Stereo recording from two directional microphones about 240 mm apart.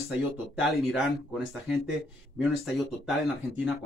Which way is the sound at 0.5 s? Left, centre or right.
Centre.